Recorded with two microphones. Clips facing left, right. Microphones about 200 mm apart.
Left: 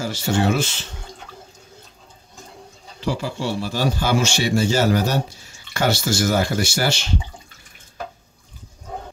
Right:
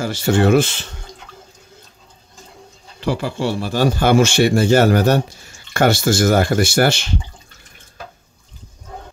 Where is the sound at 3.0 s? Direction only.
60° right (ahead or behind).